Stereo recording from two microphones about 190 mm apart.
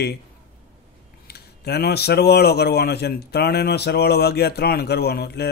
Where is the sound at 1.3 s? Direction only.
55° left (ahead or behind).